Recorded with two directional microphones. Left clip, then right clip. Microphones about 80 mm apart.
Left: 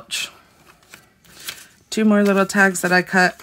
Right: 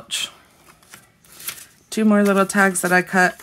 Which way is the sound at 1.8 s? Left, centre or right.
Centre.